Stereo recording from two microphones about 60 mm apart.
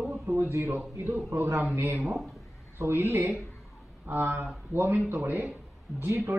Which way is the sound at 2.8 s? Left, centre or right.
Right.